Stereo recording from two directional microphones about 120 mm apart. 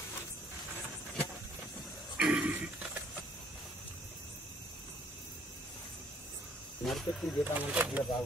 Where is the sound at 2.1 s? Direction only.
5° right (ahead or behind).